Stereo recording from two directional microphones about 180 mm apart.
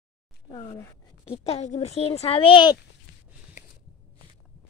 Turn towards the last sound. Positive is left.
turn(degrees=25)  # may be behind; listen again after turning